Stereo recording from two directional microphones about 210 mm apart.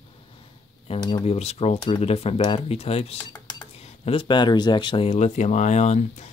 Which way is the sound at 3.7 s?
30° left (ahead or behind).